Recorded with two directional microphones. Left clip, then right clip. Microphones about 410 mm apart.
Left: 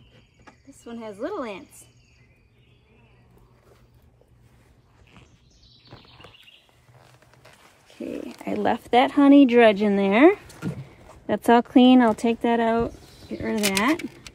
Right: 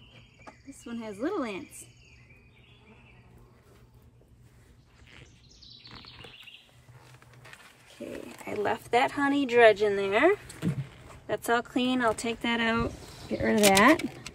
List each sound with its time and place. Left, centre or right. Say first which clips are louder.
0.8 s speech: left 2 dB; centre
8.0 s speech: left 7 dB; left
11.2 s speech: left 9 dB; centre